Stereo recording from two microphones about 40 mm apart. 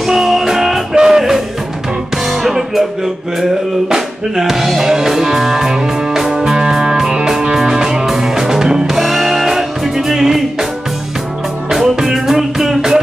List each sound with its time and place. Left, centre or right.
0.0 s music: centre
11.7 s music: centre